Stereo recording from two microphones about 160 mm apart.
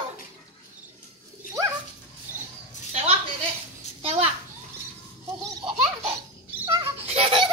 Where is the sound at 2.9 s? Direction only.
40° right (ahead or behind).